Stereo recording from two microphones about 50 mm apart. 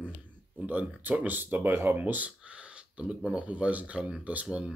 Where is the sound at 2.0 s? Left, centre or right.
Right.